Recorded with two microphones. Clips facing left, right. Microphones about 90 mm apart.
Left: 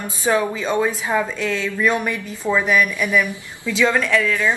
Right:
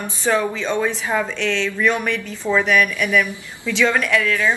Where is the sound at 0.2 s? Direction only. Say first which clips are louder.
Even; 10° left (ahead or behind).